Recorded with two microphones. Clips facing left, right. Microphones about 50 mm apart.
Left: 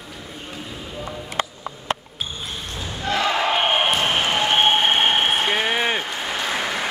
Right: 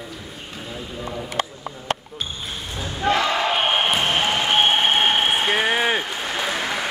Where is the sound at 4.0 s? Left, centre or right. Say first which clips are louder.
Even; centre.